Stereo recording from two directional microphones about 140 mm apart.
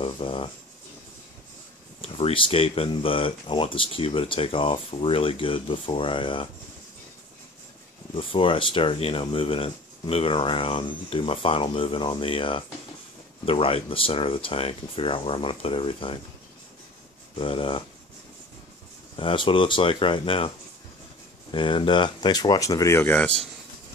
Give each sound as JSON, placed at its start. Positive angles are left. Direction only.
{"t": 0.0, "sound": "a sound", "side_deg": 40}
{"t": 2.0, "sound": "speech", "side_deg": 40}
{"t": 8.1, "sound": "speech", "side_deg": 40}
{"t": 17.4, "sound": "speech", "side_deg": 40}
{"t": 19.1, "sound": "speech", "side_deg": 40}